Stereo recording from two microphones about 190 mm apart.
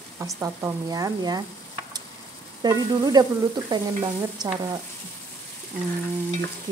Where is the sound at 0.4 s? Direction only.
20° right (ahead or behind).